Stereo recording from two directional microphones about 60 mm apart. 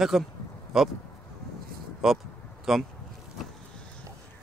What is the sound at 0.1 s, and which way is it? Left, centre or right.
Speech, centre.